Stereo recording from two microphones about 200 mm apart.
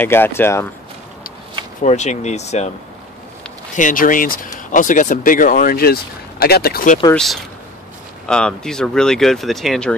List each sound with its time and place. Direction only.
0.0 s speech: 10° left (ahead or behind)
1.8 s speech: 35° left (ahead or behind)
3.7 s speech: 40° left (ahead or behind)
8.3 s speech: 5° left (ahead or behind)